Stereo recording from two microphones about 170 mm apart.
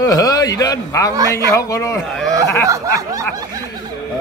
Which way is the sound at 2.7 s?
20° right (ahead or behind).